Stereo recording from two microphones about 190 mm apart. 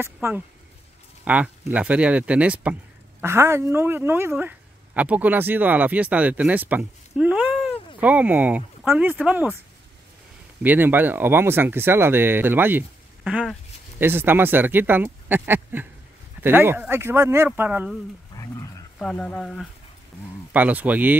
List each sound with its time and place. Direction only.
0.0 s speech: 10° right (ahead or behind)
10.6 s speech: 10° right (ahead or behind)
18.3 s a sound: 20° left (ahead or behind)
18.9 s speech: 5° left (ahead or behind)
20.5 s speech: 10° right (ahead or behind)